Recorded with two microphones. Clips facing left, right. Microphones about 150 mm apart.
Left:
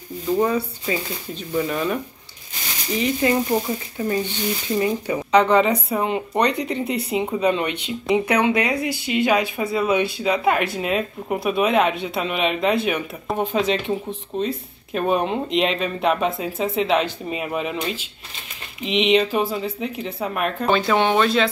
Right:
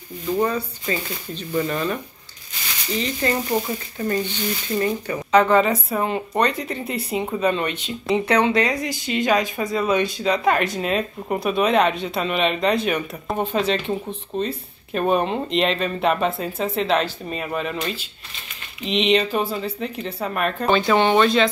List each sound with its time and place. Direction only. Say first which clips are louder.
0.3 s speech: left 2 dB; 5° left (ahead or behind)